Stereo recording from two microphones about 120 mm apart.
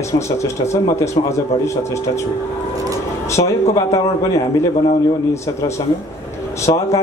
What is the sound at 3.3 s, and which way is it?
A man's voice, 30° left (ahead or behind).